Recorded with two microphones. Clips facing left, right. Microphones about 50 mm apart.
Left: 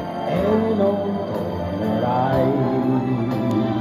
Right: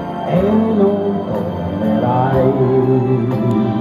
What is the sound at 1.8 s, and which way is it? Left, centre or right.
Music, right.